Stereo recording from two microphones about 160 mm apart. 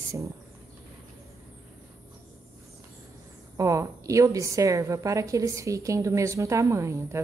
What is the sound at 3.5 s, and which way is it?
A woman's voice, 20° right (ahead or behind).